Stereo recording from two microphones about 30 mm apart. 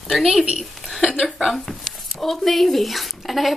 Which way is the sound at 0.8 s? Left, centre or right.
Centre.